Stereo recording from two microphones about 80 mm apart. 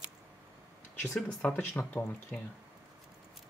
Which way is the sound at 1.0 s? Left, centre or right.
Centre.